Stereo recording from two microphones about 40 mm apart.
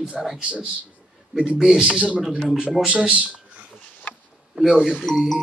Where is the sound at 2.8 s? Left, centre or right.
Right.